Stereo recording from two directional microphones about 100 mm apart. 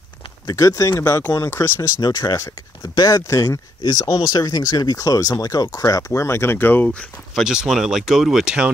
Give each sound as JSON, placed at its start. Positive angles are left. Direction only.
{"t": 0.5, "sound": "speech", "side_deg": 35}
{"t": 2.0, "sound": "speech", "side_deg": 45}
{"t": 3.8, "sound": "speech", "side_deg": 45}
{"t": 7.3, "sound": "speech", "side_deg": -5}